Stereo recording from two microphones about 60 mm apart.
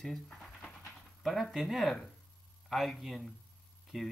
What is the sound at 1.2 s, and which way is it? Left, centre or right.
Speech, centre.